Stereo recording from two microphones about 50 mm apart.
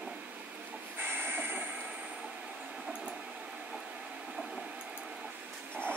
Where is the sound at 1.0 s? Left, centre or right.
Right.